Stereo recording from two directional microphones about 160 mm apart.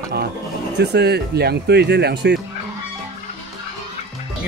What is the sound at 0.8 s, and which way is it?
Speech, 90° right.